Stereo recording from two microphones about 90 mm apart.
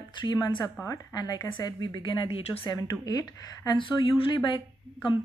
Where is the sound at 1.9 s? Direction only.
60° left (ahead or behind); by 2.7 s 80° left.